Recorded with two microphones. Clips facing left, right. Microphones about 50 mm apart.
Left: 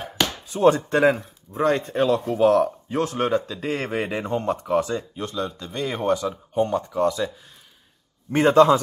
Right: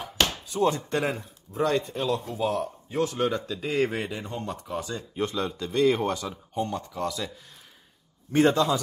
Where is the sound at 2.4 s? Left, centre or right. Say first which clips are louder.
Left 12 dB; left.